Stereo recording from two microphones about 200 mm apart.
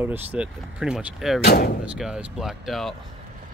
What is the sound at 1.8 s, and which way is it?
Speech, 5° right (ahead or behind).